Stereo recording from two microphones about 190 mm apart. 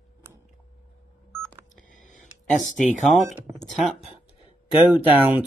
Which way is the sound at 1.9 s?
40° left (ahead or behind).